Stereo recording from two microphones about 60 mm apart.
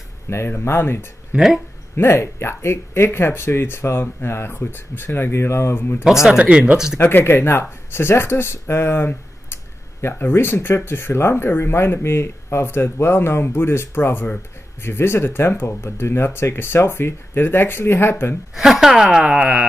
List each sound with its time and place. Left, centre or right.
0.3 s speech: left
1.3 s speech: centre
2.0 s speech: left
6.3 s speech: centre
7.0 s speech: left
18.5 s speech: centre